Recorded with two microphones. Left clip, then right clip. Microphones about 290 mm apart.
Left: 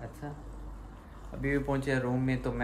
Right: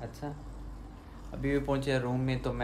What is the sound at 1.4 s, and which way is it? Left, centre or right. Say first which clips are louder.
Speech: even; centre.